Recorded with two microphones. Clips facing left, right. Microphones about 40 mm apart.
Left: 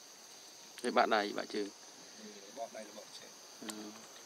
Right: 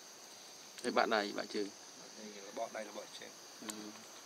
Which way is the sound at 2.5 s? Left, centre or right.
Right.